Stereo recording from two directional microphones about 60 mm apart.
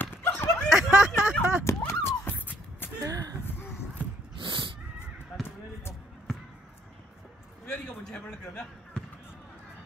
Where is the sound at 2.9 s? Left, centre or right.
Right.